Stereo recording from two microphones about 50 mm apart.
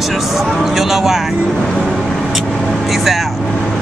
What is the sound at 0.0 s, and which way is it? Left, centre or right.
Vehicle, centre.